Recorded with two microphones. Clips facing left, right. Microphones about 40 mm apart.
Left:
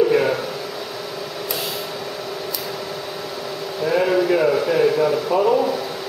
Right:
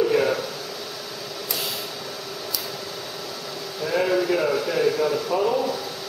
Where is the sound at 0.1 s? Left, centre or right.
Centre.